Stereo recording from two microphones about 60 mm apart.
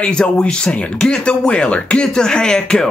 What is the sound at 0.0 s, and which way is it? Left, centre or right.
Speech, centre.